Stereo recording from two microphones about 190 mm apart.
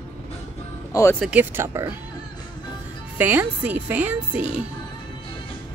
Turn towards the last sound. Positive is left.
turn(degrees=-5)  # may be behind; listen again after turning